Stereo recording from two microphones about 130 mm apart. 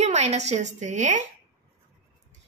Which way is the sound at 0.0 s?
60° right (ahead or behind).